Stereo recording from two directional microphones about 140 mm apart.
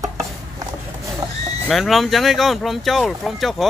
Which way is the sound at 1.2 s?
20° right (ahead or behind).